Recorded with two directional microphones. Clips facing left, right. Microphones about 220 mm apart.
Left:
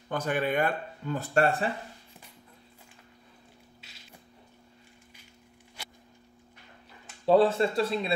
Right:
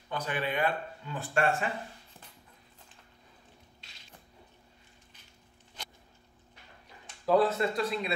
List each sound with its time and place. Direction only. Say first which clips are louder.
0.1 s speech: left 5 dB; 45° left (ahead or behind)
7.2 s speech: left 4 dB; 30° left (ahead or behind)